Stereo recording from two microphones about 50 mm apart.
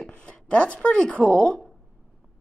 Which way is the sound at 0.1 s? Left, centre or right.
Left.